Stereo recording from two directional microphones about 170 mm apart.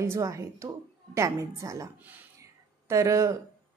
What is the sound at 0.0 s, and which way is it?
A woman's voice, 20° right (ahead or behind).